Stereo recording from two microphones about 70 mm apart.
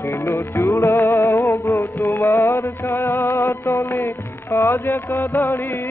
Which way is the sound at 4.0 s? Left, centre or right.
Left.